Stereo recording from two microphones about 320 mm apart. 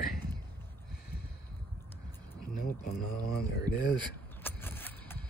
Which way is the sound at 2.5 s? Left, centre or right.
Left.